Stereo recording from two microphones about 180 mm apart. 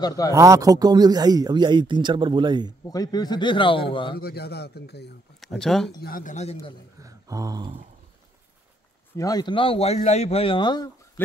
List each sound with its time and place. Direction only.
0.0 s a man's voice: 20° left (ahead or behind)
0.3 s speech: 15° right (ahead or behind)
2.8 s a man's voice: 20° left (ahead or behind)
4.2 s speech: 60° left (ahead or behind)
5.4 s speech: centre (ahead or behind)
5.9 s a man's voice: 55° left (ahead or behind); by 6.7 s 35° left (ahead or behind)
7.0 s a sound: 20° right (ahead or behind)
9.1 s a man's voice: 20° left (ahead or behind)
11.2 s a sound: 10° left (ahead or behind)